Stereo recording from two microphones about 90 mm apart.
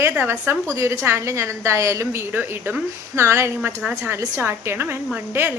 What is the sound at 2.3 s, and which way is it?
Speech, 15° right (ahead or behind).